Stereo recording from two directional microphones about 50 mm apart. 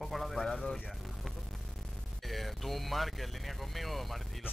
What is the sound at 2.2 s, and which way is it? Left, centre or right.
A man's voice, centre.